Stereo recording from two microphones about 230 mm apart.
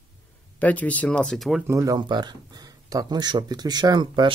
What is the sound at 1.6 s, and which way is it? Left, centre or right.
Speech, centre.